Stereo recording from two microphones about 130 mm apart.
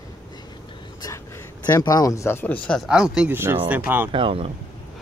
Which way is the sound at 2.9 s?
5° right (ahead or behind).